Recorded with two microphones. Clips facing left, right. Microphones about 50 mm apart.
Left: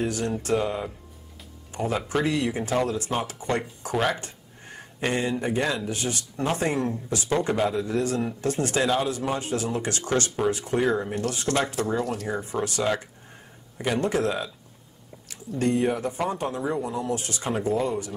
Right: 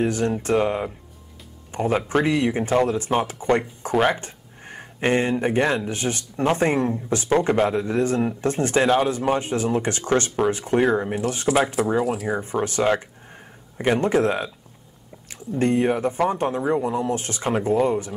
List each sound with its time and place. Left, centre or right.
0.0 s speech: right
11.4 s speech: centre
12.4 s speech: right